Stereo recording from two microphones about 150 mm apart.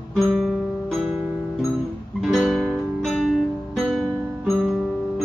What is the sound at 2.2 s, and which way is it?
Music, 5° right (ahead or behind).